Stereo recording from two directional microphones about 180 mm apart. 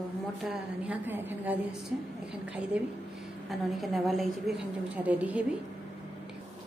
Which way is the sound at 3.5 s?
Centre (ahead or behind).